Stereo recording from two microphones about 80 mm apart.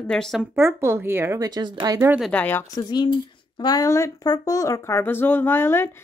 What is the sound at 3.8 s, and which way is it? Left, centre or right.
Speech, left.